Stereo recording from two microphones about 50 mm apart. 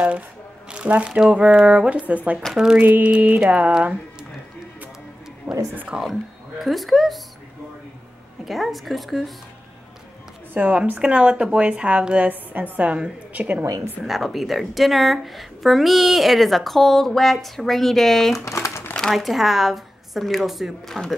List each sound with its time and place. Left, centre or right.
0.7 s a woman's voice: right
1.6 s speech: centre
1.9 s a woman's voice: right
2.5 s speech: centre
2.8 s a woman's voice: right
5.5 s speech: right
5.9 s speech: centre
6.6 s speech: centre
8.5 s speech: centre
10.5 s a woman's voice: right
14.0 s speech: centre
18.4 s crumpling: left
19.1 s a woman's voice: centre